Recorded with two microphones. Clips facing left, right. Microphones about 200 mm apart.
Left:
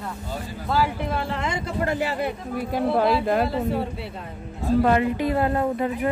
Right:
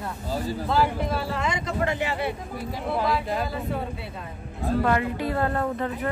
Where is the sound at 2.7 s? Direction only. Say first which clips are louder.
Left 5 dB; 60° left (ahead or behind).